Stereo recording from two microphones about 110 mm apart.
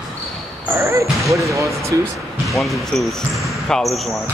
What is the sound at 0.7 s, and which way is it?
Speech, 25° right (ahead or behind).